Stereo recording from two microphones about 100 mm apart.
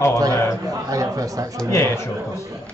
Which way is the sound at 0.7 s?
35° right (ahead or behind).